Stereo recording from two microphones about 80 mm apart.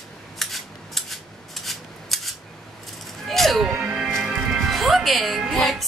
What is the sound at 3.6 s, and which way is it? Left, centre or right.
Music, centre.